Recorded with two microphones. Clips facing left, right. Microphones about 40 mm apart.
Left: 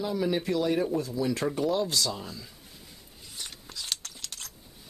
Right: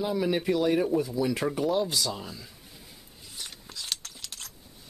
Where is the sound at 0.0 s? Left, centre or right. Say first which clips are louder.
Right 1 dB; centre.